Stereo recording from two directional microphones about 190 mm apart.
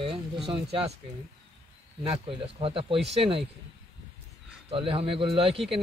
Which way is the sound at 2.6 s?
30° right (ahead or behind).